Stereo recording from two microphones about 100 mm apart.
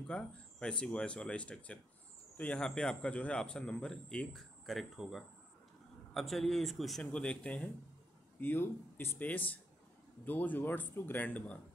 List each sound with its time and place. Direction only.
0.1 s a man's voice: 10° left (ahead or behind)
7.1 s speech: 10° left (ahead or behind)